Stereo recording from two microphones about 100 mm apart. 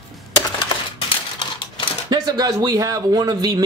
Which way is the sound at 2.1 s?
45° right (ahead or behind).